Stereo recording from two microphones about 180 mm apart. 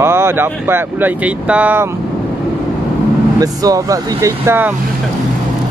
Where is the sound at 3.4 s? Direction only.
20° right (ahead or behind).